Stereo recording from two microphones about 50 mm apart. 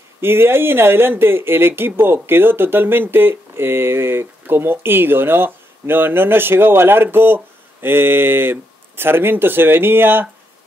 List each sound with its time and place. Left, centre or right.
0.2 s speech: right